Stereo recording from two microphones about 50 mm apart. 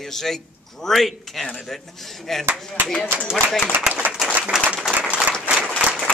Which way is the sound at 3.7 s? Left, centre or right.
Centre.